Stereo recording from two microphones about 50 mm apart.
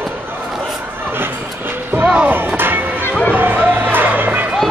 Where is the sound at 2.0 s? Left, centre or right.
Right.